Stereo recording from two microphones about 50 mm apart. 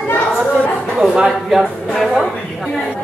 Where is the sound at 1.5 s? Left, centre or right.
Centre.